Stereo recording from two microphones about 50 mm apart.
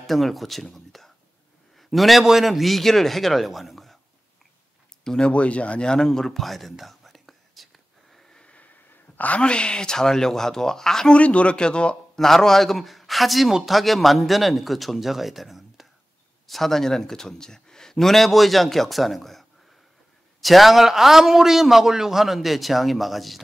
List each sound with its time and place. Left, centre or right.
0.0 s a man's voice: centre
5.0 s speech: centre
5.3 s whispering: left; by 8.4 s centre
8.4 s a sound: left
9.4 s speech: centre
11.1 s speech: left
12.2 s a man's voice: centre